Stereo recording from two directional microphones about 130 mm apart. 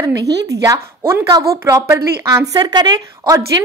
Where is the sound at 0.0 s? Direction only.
25° right (ahead or behind).